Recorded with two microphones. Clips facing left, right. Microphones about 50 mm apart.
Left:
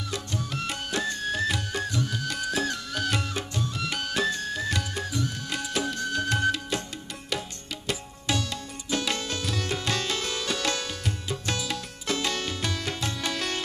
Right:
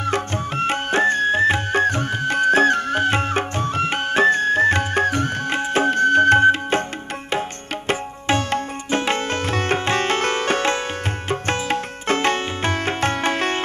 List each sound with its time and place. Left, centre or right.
0.0 s music: right
7.9 s tabla: right
11.2 s music: right